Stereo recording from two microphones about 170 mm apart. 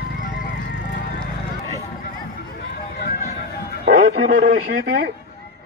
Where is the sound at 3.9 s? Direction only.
65° right (ahead or behind).